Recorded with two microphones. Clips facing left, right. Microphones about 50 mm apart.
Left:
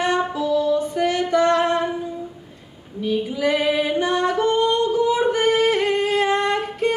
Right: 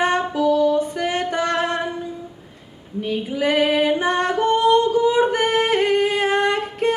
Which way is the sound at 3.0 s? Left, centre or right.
Right.